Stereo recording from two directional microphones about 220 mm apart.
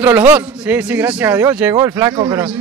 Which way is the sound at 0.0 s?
10° right (ahead or behind).